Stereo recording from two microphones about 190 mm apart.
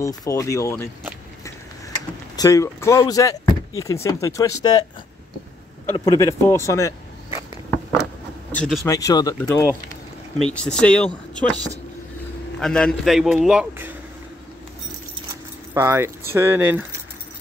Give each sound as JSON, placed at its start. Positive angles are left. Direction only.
{"t": 0.0, "sound": "speech", "side_deg": 15}
{"t": 2.3, "sound": "speech", "side_deg": 20}
{"t": 5.9, "sound": "speech", "side_deg": 15}
{"t": 8.5, "sound": "speech", "side_deg": 5}
{"t": 8.8, "sound": "speech", "side_deg": 20}
{"t": 10.5, "sound": "a man's voice", "side_deg": 5}
{"t": 12.5, "sound": "a man's voice", "side_deg": 5}
{"t": 15.7, "sound": "speech", "side_deg": -15}